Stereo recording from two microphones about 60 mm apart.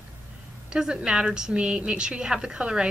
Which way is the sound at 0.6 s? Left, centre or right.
Centre.